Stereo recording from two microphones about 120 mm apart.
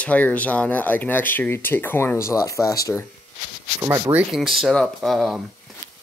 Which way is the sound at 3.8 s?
20° right (ahead or behind).